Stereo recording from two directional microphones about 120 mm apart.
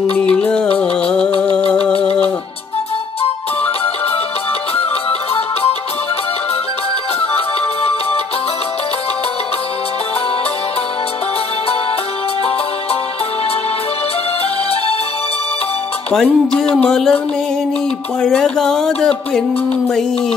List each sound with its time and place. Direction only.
0.3 s music: 10° left (ahead or behind)
1.9 s music: 55° left (ahead or behind)
5.3 s music: 50° left (ahead or behind)
16.1 s speech: 5° left (ahead or behind)
18.2 s speech: 5° left (ahead or behind)